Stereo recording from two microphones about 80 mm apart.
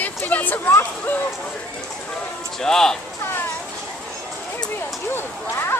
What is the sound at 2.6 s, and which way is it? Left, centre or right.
Speech, centre.